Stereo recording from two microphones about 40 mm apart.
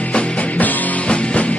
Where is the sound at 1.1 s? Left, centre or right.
Left.